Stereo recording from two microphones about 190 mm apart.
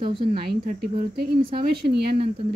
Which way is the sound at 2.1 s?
30° right (ahead or behind).